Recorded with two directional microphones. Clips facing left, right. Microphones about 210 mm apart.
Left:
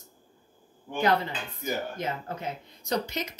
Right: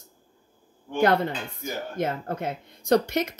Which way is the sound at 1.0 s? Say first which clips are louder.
Right 4 dB; 50° right (ahead or behind).